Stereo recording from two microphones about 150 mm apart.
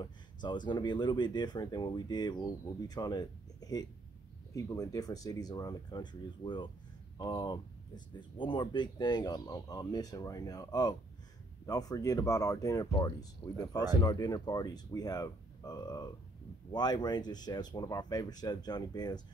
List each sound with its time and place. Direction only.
0.0 s speech: 30° left (ahead or behind)